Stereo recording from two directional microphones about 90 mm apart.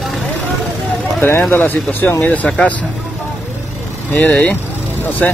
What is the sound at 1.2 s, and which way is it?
Speech, 25° left (ahead or behind).